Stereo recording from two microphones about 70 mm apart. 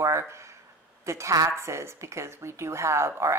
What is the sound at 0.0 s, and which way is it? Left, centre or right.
Speech, right.